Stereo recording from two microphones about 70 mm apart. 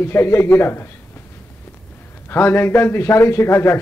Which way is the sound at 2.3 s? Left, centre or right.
Left.